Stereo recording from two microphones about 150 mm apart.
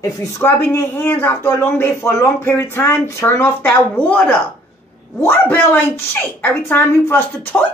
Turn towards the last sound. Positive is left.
turn(degrees=15)  # may be behind; listen again after turning